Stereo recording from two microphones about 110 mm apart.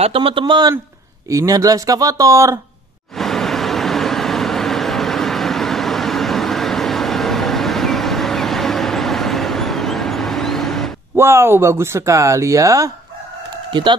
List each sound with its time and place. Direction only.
0.0 s a man's voice: 55° right (ahead or behind)
1.3 s speech: 30° right (ahead or behind)
3.2 s vehicle: 5° left (ahead or behind)
11.1 s speech: 25° right (ahead or behind)
13.7 s speech: 45° right (ahead or behind)